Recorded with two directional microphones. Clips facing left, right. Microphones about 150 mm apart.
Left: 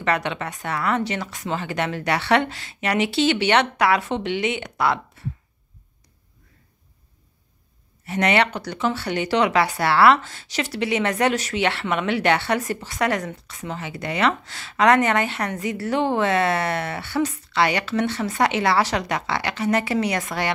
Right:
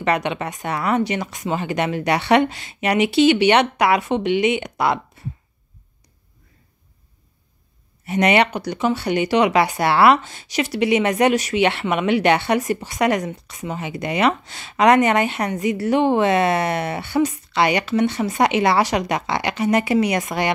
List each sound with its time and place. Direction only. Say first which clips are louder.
0.0 s speech: right 3 dB; 15° right (ahead or behind)
8.1 s speech: right 3 dB; 15° right (ahead or behind)